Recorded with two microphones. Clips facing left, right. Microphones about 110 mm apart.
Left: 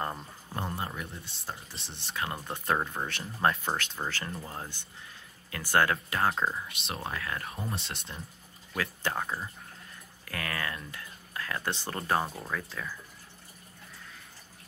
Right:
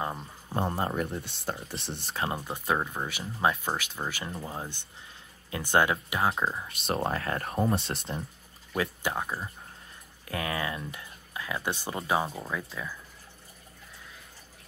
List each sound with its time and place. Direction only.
0.7 s speech: 40° right (ahead or behind)
1.1 s speech: 70° right (ahead or behind)
2.1 s speech: 25° right (ahead or behind)
2.4 s speech: 5° right (ahead or behind)
6.9 s speech: 35° right (ahead or behind)
9.0 s speech: 5° right (ahead or behind)
10.2 s speech: 20° right (ahead or behind)